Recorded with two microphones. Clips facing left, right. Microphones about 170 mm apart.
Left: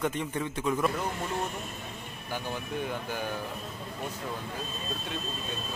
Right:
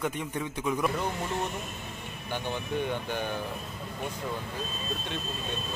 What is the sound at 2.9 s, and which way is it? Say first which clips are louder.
Speech: right 2 dB; 5° left (ahead or behind).